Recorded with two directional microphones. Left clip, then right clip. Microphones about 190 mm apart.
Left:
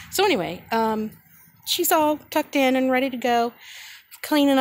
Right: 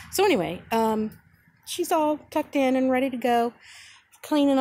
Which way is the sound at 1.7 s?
10° left (ahead or behind).